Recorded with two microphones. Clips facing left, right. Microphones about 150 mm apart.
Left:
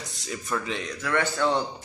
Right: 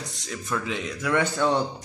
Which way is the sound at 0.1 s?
Centre (ahead or behind).